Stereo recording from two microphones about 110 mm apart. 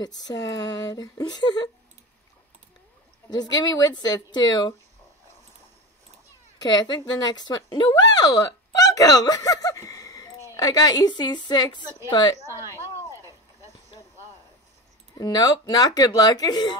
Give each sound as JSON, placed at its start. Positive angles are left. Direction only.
{"t": 0.0, "sound": "a woman's voice", "side_deg": 35}
{"t": 3.3, "sound": "a woman's voice", "side_deg": 35}
{"t": 6.9, "sound": "a woman's voice", "side_deg": 35}
{"t": 15.1, "sound": "a woman's voice", "side_deg": 35}